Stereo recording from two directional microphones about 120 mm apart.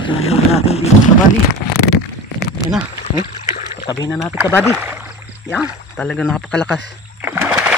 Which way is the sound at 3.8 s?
30° left (ahead or behind).